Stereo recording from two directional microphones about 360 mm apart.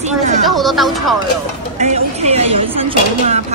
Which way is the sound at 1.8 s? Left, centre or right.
Centre.